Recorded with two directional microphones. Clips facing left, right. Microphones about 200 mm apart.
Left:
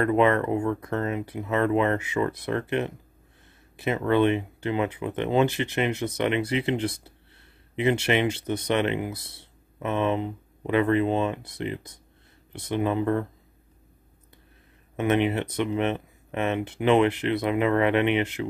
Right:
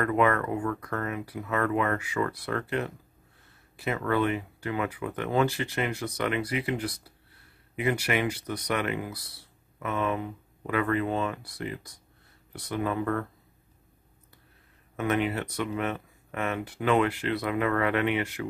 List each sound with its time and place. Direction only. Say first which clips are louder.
0.0 s speech: left 4 dB; 25° left (ahead or behind)
15.0 s speech: left 4 dB; 20° left (ahead or behind)